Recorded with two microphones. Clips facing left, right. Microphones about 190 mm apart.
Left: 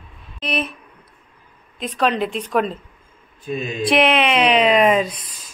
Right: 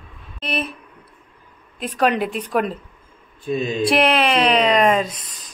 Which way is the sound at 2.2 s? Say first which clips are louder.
Left 1 dB; 10° right (ahead or behind).